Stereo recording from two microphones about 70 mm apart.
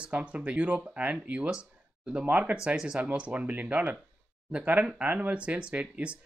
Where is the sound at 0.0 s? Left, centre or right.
Centre.